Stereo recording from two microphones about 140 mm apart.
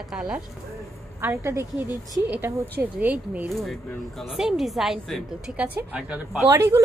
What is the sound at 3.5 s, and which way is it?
A woman's voice, centre (ahead or behind).